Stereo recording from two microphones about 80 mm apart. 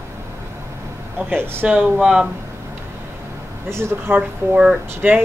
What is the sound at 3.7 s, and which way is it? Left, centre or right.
Speech, right.